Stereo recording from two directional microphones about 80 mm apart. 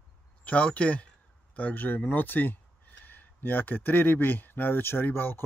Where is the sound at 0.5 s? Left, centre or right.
Centre.